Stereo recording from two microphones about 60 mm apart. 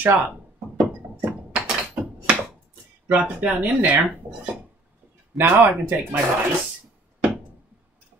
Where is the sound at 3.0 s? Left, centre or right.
Right.